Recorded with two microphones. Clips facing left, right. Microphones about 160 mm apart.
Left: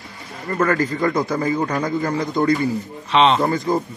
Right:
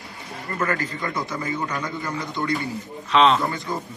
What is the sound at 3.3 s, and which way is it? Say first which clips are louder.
Speech: left 7 dB; 40° left (ahead or behind).